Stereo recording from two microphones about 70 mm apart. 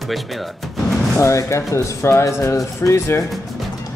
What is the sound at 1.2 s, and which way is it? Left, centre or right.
Speech, left.